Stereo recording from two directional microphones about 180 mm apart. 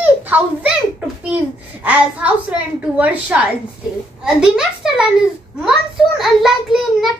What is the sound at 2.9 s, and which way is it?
A woman's voice, 10° right (ahead or behind).